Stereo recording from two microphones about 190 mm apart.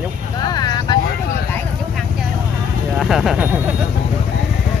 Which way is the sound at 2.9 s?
Centre (ahead or behind).